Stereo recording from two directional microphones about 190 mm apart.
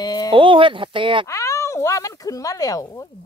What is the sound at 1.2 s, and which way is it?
Speech, 15° left (ahead or behind).